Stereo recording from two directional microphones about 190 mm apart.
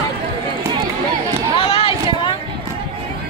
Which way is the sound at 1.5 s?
30° left (ahead or behind).